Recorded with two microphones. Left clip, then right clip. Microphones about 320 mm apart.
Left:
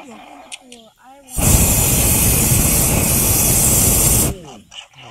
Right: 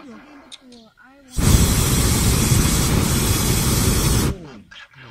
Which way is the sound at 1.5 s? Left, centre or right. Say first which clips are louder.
Left 3 dB; centre.